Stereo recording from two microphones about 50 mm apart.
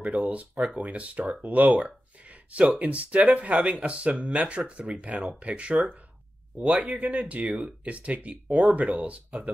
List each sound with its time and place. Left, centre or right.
0.0 s speech: right